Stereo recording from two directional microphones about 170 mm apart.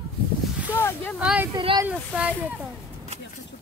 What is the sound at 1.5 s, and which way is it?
Speech, 30° right (ahead or behind).